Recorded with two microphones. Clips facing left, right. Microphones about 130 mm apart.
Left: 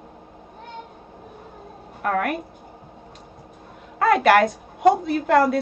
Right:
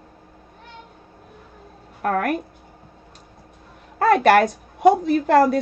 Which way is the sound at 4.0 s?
40° right (ahead or behind).